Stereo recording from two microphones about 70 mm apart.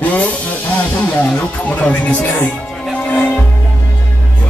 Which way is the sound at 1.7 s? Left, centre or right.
Left.